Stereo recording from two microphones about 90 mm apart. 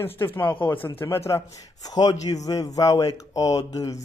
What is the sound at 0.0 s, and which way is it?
A man's voice, 25° left (ahead or behind).